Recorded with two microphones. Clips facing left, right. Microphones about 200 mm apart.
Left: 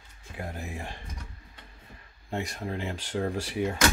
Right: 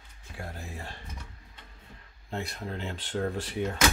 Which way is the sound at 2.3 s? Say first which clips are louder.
Left 3 dB; 10° left (ahead or behind).